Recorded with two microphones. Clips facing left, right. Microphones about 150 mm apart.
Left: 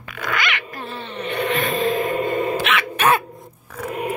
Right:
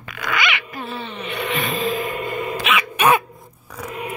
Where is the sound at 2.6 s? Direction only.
10° right (ahead or behind).